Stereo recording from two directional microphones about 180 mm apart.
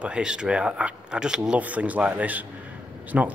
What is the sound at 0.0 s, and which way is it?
Speech, 5° right (ahead or behind).